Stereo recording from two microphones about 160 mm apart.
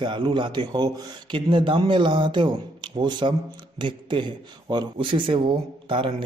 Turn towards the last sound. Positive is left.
turn(degrees=-30)  # may be behind; listen again after turning